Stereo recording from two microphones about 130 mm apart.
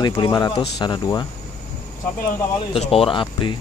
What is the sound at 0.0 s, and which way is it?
Speech, 35° left (ahead or behind).